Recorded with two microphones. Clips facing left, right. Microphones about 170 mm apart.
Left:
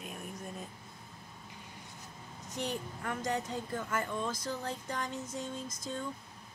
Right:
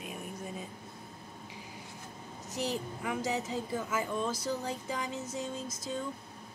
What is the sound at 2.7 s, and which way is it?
Speech, 5° right (ahead or behind).